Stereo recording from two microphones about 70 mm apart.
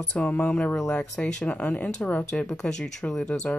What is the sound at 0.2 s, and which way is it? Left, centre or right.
Speech, centre.